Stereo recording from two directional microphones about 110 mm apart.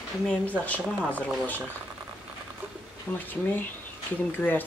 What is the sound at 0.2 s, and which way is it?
Speech, 10° left (ahead or behind).